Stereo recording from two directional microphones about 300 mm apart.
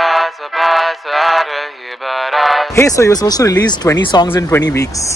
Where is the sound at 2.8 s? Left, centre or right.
Centre.